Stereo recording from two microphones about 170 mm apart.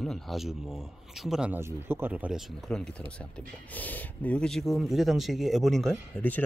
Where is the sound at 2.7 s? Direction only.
5° left (ahead or behind).